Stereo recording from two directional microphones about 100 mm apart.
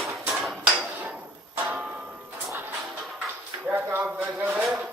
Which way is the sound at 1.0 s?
15° right (ahead or behind).